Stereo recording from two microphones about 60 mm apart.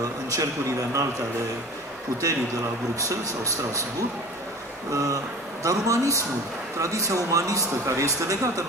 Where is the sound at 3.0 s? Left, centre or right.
Right.